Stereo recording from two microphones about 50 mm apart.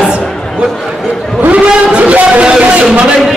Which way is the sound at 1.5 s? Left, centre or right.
Right.